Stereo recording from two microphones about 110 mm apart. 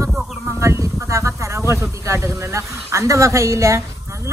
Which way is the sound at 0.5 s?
25° right (ahead or behind).